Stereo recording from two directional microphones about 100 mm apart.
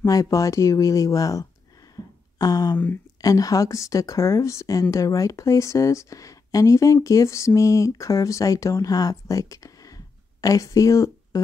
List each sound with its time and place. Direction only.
0.0 s speech: 35° left (ahead or behind)